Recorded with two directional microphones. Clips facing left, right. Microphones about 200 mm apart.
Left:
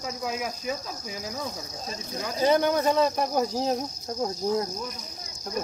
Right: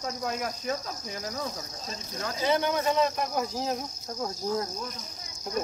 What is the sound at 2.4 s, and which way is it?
Speech, 45° left (ahead or behind).